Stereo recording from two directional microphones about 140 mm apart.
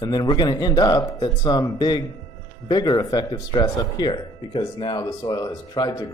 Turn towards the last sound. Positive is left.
turn(degrees=30)  # may be behind; listen again after turning